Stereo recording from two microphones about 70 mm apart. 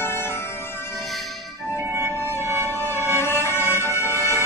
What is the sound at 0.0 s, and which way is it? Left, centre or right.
Music, left.